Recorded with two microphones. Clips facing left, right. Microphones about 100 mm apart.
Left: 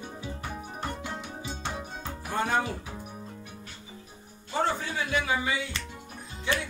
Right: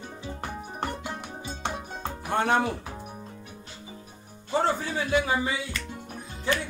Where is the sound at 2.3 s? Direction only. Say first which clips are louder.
Right 4 dB; 65° right (ahead or behind).